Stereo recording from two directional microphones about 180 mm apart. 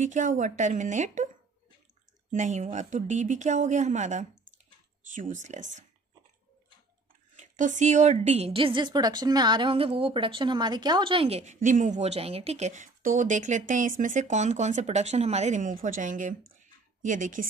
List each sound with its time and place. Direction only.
0.0 s speech: 45° right (ahead or behind)
2.3 s a woman's voice: 45° right (ahead or behind)
7.3 s a woman's voice: 45° right (ahead or behind)
16.5 s a sound: 45° right (ahead or behind)